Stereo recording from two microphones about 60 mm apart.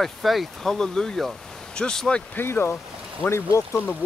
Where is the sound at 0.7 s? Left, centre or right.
Centre.